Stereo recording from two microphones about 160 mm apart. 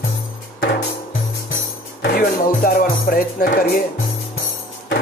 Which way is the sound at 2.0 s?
75° left (ahead or behind).